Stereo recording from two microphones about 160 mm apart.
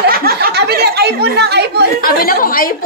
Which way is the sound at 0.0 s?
70° right (ahead or behind).